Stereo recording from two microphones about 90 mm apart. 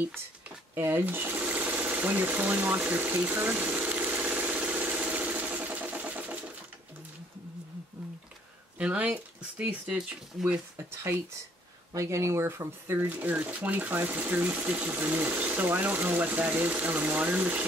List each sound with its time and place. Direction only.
0.7 s sewing machine: 25° right (ahead or behind)
8.7 s speech: 15° right (ahead or behind)
11.9 s speech: 35° right (ahead or behind)
13.0 s speech: 20° right (ahead or behind)